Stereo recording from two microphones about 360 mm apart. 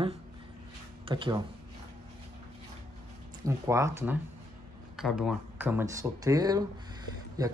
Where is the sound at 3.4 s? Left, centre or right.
Centre.